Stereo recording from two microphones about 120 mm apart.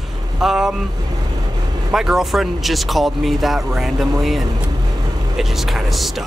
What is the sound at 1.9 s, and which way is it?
Speech, 5° right (ahead or behind).